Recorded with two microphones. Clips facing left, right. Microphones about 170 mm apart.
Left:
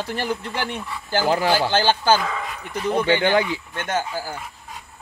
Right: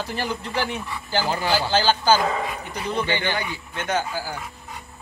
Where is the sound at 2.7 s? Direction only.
55° left (ahead or behind).